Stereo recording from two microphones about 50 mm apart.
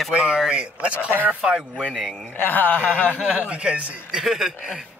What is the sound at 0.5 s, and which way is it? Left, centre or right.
Speech, centre.